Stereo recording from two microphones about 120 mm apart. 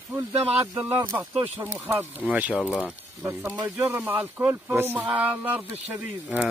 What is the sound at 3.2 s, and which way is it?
Speech, 20° right (ahead or behind).